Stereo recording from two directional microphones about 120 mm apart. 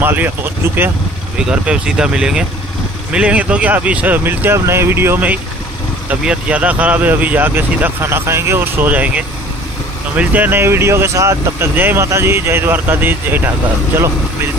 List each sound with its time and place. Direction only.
0.0 s speech: 15° right (ahead or behind)